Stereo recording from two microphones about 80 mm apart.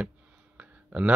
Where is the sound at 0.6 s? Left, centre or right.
Centre.